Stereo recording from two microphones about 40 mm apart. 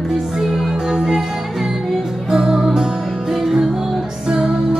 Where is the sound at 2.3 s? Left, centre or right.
Centre.